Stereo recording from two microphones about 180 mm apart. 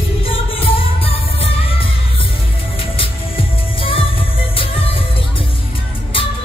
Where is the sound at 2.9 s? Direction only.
30° left (ahead or behind).